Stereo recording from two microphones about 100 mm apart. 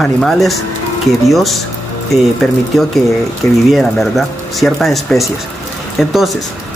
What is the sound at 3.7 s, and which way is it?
Speech, centre (ahead or behind).